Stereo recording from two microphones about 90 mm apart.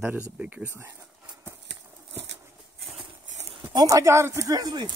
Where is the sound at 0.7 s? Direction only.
25° right (ahead or behind).